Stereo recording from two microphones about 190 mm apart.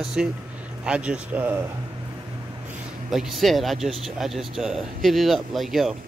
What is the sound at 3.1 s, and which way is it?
Speech, centre (ahead or behind).